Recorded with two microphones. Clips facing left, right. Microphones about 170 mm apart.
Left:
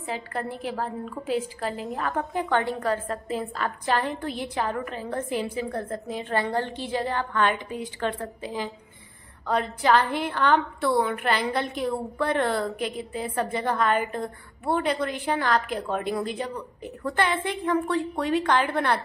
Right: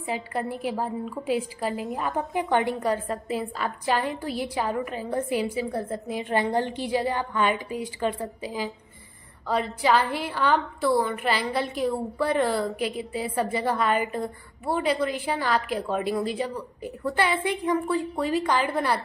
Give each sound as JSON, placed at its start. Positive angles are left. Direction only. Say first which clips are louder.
{"t": 0.0, "sound": "a woman's voice", "louder": "right 2 dB", "side_deg": -10}